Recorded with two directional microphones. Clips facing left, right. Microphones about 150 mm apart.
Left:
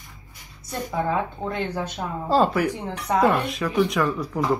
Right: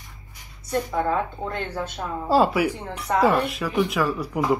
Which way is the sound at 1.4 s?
15° left (ahead or behind).